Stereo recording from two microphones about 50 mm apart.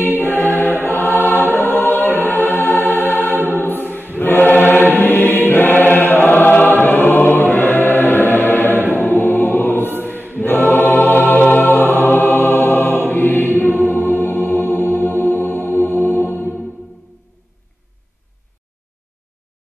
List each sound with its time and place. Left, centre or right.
0.2 s choir: left
13.8 s music: left